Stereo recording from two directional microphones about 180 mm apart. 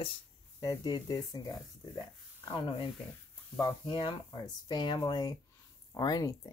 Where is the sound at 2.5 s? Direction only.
25° left (ahead or behind).